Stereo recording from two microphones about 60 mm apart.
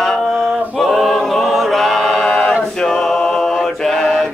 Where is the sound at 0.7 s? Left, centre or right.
Centre.